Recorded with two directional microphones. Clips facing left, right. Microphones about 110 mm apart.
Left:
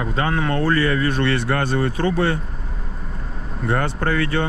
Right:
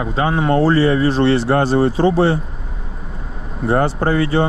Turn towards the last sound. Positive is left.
turn(degrees=-20)  # may be behind; listen again after turning